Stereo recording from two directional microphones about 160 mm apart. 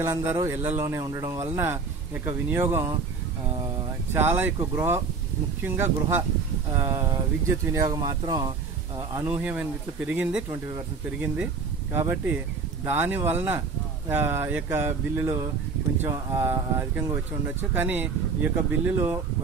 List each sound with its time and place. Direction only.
0.0 s speech: 15° right (ahead or behind)
4.1 s speech: 15° right (ahead or behind)
7.4 s speech: 20° right (ahead or behind)
9.2 s speech: 10° right (ahead or behind)